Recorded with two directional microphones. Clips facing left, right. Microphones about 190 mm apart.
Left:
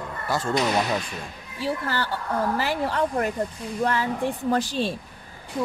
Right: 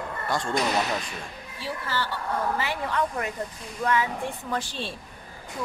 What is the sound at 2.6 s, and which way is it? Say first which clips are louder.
Speech: left 3 dB; 35° left (ahead or behind).